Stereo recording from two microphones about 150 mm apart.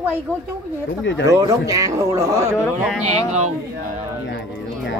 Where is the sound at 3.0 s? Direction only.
50° right (ahead or behind).